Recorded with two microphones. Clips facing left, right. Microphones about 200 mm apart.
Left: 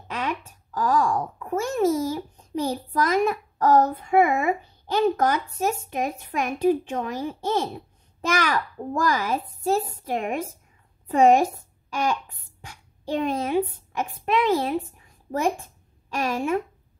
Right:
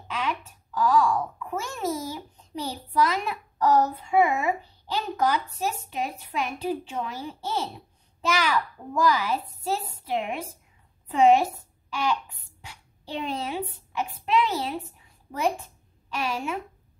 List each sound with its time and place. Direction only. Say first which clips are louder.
0.1 s a child's voice: left 1 dB; 45° left (ahead or behind)